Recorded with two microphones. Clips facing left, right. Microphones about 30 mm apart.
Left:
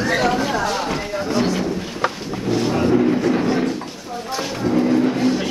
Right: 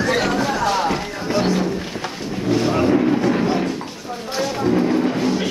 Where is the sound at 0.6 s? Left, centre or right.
Centre.